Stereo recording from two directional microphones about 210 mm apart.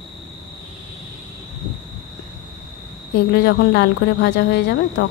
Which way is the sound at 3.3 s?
55° left (ahead or behind).